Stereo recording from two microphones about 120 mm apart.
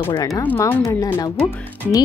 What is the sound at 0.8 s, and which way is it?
Speech, 25° left (ahead or behind).